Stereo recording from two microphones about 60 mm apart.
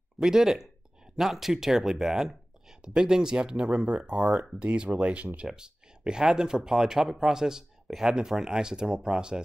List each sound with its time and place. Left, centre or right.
0.2 s speech: centre